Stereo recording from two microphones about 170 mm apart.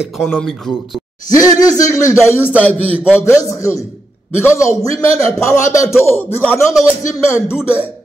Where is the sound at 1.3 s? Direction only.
20° left (ahead or behind).